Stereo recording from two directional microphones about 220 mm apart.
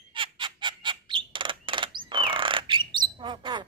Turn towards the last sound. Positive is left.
turn(degrees=-20)  # may be behind; listen again after turning